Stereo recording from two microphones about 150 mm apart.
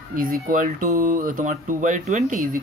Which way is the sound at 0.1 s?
70° right (ahead or behind).